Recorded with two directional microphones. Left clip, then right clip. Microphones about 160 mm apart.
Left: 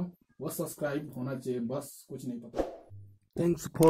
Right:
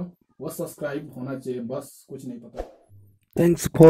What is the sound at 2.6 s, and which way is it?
Speech, centre (ahead or behind).